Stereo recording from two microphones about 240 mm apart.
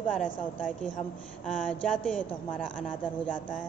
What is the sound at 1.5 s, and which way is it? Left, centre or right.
Speech, centre.